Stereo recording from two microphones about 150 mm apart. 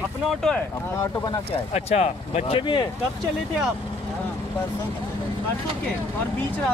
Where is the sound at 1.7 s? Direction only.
45° left (ahead or behind).